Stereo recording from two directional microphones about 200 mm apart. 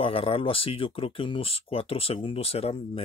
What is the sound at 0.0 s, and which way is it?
Speech, 30° left (ahead or behind).